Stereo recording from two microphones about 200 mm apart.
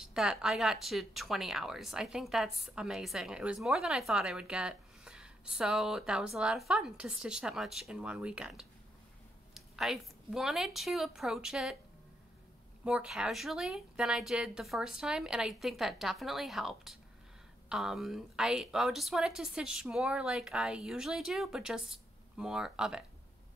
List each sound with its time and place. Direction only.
0.0 s a woman's voice: 5° right (ahead or behind)
12.8 s speech: 5° right (ahead or behind)